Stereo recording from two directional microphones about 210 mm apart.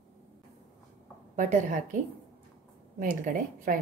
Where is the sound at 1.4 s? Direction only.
35° right (ahead or behind).